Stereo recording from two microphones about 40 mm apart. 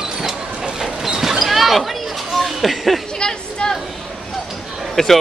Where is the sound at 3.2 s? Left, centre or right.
Left.